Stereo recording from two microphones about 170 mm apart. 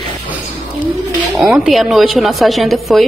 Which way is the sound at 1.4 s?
5° right (ahead or behind).